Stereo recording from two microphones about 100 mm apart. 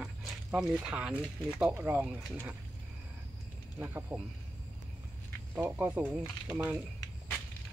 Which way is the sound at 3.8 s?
20° right (ahead or behind).